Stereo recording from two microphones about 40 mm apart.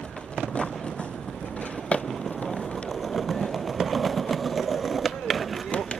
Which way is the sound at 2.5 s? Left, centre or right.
Left.